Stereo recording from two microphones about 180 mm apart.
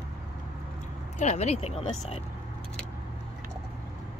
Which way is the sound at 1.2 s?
40° left (ahead or behind).